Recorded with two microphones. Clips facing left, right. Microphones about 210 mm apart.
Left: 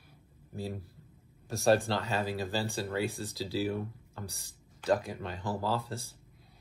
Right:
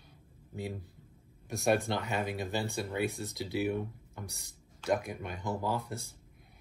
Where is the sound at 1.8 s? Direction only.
15° right (ahead or behind).